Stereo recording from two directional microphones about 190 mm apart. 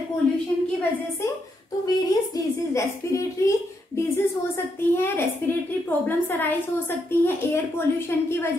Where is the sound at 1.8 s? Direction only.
15° left (ahead or behind).